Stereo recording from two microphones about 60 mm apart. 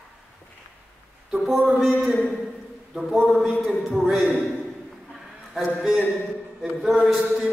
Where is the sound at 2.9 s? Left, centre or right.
Centre.